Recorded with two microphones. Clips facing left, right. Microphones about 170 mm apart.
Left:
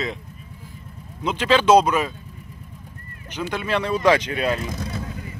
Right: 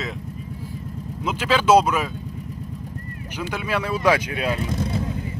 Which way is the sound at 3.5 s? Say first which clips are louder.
Left 2 dB; 10° right (ahead or behind).